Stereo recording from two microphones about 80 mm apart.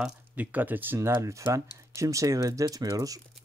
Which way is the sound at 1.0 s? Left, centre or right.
Right.